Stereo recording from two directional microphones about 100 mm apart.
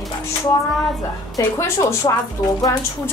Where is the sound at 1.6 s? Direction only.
30° left (ahead or behind).